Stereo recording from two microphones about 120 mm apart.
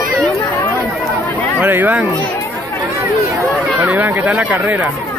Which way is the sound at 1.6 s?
15° right (ahead or behind).